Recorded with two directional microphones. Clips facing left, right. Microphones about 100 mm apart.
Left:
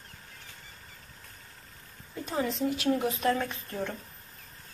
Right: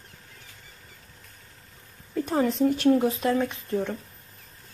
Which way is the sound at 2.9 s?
25° right (ahead or behind).